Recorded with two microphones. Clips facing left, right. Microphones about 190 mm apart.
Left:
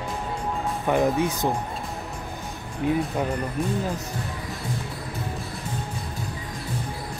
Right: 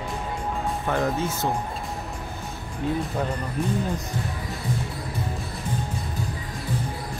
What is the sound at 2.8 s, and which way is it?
Speech, 15° left (ahead or behind).